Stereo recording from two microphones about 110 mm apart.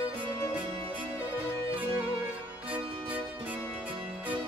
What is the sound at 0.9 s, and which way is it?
Music, 15° right (ahead or behind).